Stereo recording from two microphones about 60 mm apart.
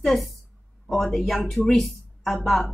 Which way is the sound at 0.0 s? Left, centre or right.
Centre.